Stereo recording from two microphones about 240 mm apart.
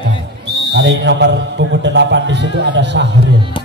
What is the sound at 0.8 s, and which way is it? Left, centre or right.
A man's voice, right.